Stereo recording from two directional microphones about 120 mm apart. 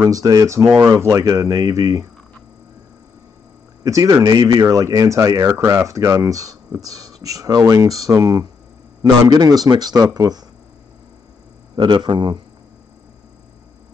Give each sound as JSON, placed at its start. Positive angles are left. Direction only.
{"t": 0.0, "sound": "speech", "side_deg": -30}
{"t": 3.8, "sound": "speech", "side_deg": -30}
{"t": 11.7, "sound": "speech", "side_deg": -40}